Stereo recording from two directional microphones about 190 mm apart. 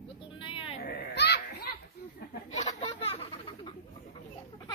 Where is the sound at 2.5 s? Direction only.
35° left (ahead or behind).